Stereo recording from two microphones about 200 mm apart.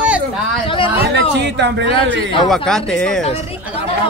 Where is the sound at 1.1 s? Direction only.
60° right (ahead or behind).